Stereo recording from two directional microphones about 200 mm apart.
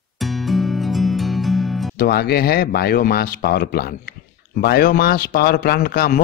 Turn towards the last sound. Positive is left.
turn(degrees=45)  # may be behind; listen again after turning